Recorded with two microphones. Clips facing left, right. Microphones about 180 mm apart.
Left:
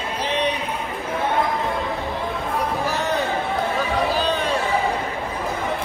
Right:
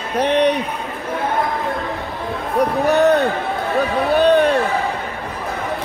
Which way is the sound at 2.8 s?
65° right (ahead or behind).